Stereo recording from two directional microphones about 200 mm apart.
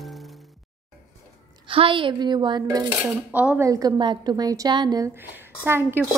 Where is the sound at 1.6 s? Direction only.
25° right (ahead or behind).